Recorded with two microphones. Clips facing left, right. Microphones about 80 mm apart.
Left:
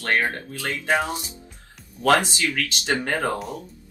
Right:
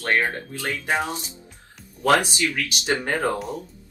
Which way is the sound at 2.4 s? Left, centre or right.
Right.